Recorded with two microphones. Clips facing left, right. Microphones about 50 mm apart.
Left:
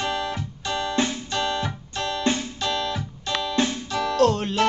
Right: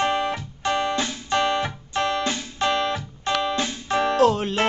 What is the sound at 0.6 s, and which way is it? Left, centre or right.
Music, right.